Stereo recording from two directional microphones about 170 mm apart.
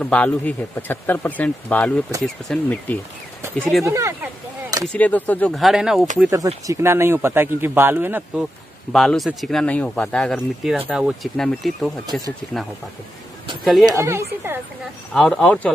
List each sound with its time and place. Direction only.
0.0 s speech: 10° left (ahead or behind)
3.8 s speech: 15° right (ahead or behind)
4.9 s speech: 10° left (ahead or behind)
6.3 s speech: 20° right (ahead or behind)
8.9 s speech: centre (ahead or behind)
13.8 s speech: 20° right (ahead or behind)
15.1 s speech: 5° left (ahead or behind)